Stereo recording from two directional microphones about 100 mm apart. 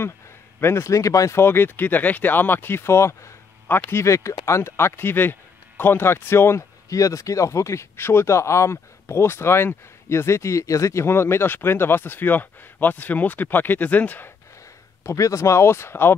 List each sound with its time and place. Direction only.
0.6 s speech: 25° left (ahead or behind)
15.0 s speech: 30° left (ahead or behind)